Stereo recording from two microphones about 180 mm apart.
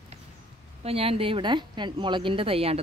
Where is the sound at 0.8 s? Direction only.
35° right (ahead or behind).